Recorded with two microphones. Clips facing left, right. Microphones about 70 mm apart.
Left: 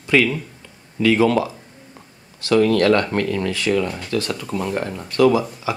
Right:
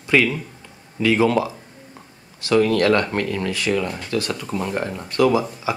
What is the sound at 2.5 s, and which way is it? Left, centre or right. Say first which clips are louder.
Speech: left 1 dB; right.